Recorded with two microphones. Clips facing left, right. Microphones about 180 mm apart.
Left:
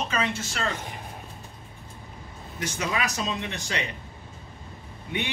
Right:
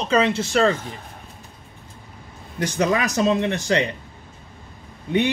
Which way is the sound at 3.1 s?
70° right (ahead or behind).